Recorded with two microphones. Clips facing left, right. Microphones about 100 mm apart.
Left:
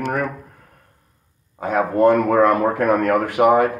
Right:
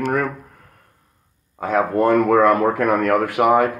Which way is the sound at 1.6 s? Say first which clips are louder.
Right 1 dB; 15° left (ahead or behind).